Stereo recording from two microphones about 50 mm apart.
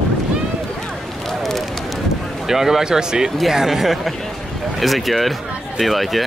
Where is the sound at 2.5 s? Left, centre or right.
Centre.